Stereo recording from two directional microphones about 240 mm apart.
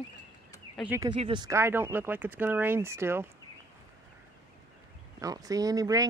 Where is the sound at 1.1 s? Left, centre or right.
Right.